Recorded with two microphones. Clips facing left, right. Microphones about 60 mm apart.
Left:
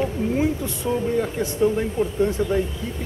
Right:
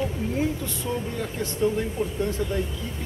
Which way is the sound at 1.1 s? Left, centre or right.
Centre.